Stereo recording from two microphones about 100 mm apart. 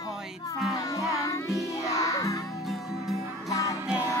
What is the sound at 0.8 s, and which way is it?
Music, 35° left (ahead or behind).